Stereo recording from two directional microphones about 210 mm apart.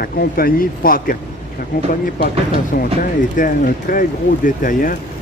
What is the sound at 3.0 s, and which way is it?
Speech, 40° left (ahead or behind).